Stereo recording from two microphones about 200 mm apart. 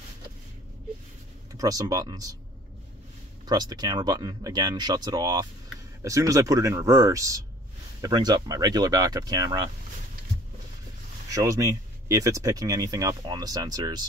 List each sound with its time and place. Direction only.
1.5 s speech: 20° right (ahead or behind)
3.4 s speech: 20° right (ahead or behind)
11.2 s speech: 15° right (ahead or behind)